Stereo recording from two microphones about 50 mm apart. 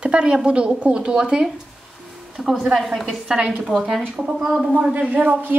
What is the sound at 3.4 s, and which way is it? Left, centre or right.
Speech, right.